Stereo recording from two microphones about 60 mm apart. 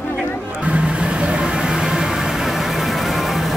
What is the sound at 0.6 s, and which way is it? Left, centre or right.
Vehicle, centre.